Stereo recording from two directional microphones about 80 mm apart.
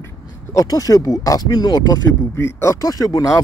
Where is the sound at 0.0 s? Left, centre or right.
Left.